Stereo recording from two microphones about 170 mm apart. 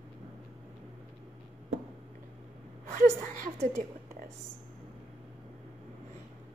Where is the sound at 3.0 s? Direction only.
50° right (ahead or behind).